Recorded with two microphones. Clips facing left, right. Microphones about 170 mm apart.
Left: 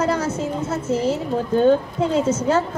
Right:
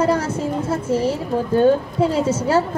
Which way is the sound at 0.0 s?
10° right (ahead or behind).